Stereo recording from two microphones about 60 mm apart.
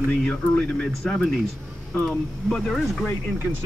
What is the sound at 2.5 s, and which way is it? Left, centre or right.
Speech, centre.